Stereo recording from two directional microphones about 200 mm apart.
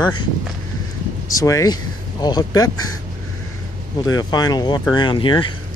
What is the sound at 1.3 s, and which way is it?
Speech, 15° left (ahead or behind).